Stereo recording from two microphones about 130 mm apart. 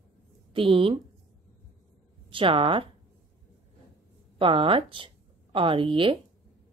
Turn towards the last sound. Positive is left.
turn(degrees=-40)  # may be behind; listen again after turning